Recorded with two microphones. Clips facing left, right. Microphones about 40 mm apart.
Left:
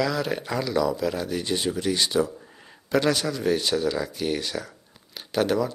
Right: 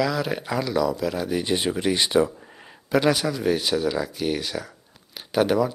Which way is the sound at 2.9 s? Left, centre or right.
Centre.